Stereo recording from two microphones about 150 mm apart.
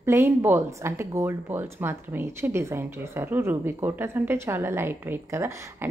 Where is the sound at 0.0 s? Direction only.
15° right (ahead or behind).